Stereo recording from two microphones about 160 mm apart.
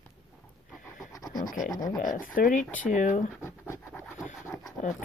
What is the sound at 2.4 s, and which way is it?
Speech, 55° left (ahead or behind).